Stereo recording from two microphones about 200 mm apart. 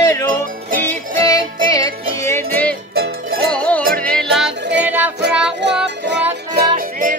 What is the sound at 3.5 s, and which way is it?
Music, 5° left (ahead or behind).